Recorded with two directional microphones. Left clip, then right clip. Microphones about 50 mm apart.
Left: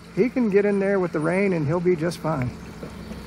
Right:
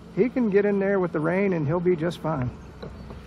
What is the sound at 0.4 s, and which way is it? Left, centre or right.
Speech, centre.